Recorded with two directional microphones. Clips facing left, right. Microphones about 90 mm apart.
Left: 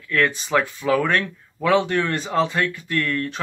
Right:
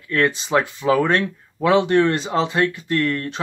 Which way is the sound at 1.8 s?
25° right (ahead or behind).